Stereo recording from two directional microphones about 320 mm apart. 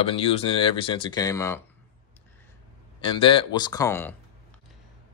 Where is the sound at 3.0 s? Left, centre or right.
Centre.